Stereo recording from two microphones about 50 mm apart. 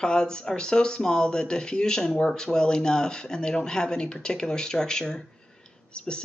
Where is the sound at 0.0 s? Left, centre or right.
Centre.